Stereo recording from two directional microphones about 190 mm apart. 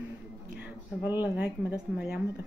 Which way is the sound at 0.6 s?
10° right (ahead or behind).